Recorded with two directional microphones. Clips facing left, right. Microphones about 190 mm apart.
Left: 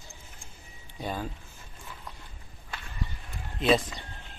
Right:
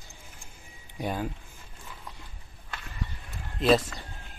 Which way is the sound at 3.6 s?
Centre (ahead or behind).